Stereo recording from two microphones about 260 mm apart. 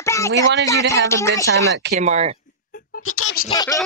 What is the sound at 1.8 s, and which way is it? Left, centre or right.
Speech, right.